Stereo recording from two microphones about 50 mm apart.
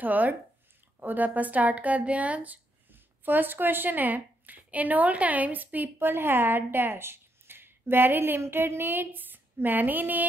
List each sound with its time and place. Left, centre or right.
0.0 s speech: right
5.9 s a woman's voice: right